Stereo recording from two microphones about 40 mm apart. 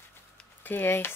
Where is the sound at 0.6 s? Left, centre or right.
Left.